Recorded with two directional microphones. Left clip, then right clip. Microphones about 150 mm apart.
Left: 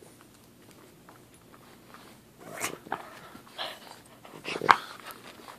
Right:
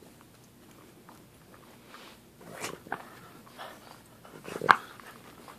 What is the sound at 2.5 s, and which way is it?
Dog, 45° left (ahead or behind).